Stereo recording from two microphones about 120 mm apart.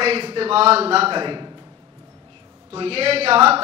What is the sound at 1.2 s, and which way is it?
Speech, 35° right (ahead or behind).